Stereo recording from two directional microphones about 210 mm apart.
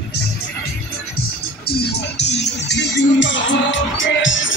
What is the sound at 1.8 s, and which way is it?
Music, 55° left (ahead or behind).